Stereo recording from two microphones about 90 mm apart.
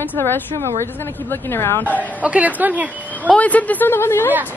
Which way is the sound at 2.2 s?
15° right (ahead or behind).